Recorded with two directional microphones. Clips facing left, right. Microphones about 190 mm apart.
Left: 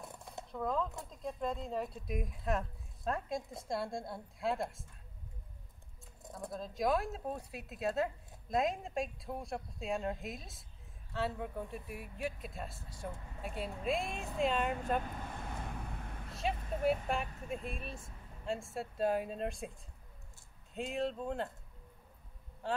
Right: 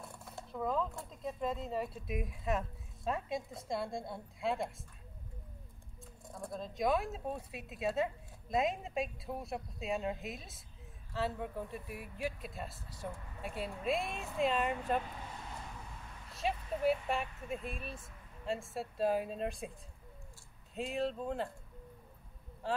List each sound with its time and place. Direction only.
0.0 s a sound: 20° left (ahead or behind)
0.5 s speech: centre (ahead or behind)
6.5 s speech: centre (ahead or behind)
15.0 s vehicle: 50° left (ahead or behind)
16.3 s speech: centre (ahead or behind)
20.7 s speech: centre (ahead or behind)
22.6 s speech: centre (ahead or behind)